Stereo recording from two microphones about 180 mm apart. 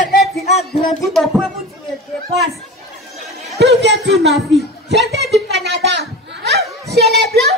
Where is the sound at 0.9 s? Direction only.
Centre (ahead or behind).